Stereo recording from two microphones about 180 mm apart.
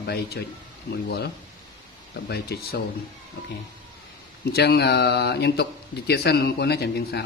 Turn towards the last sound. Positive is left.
turn(degrees=60)  # may be behind; listen again after turning